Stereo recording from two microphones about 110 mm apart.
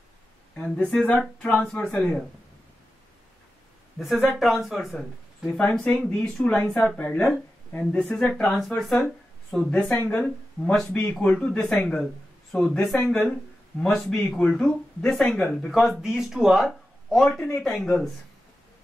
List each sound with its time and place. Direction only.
0.6 s speech: 10° left (ahead or behind)
4.0 s speech: centre (ahead or behind)
5.6 s speech: 10° left (ahead or behind)
9.7 s speech: 15° left (ahead or behind)
10.7 s speech: 5° left (ahead or behind)